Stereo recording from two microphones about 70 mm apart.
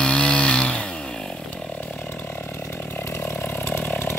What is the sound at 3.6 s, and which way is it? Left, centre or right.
Chainsaw, left.